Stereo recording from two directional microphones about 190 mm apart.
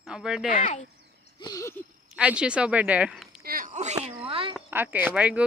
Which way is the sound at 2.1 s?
5° right (ahead or behind).